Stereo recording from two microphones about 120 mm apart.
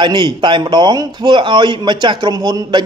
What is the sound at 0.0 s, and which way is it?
A man's voice, 40° right (ahead or behind).